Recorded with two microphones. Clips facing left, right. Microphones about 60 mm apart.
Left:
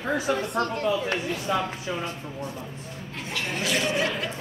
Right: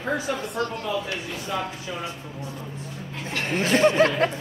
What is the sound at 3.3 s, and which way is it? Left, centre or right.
Speech, right.